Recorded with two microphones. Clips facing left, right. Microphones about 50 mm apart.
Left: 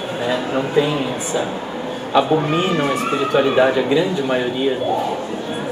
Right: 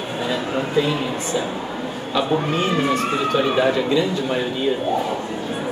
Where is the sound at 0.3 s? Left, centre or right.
Centre.